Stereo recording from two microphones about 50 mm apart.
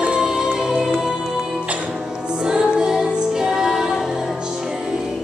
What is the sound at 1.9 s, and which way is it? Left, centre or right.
Music, centre.